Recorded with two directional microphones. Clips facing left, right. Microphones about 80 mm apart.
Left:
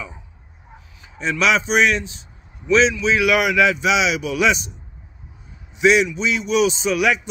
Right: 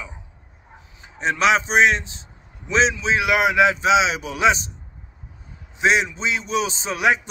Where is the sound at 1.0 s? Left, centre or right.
Right.